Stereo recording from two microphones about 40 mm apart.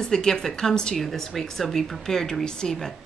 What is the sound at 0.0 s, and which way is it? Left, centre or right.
Speech, centre.